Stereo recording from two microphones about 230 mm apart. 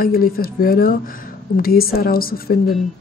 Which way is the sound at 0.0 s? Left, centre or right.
Left.